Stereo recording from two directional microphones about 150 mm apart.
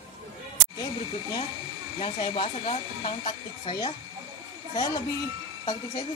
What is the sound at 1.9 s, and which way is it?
Speech, 40° left (ahead or behind).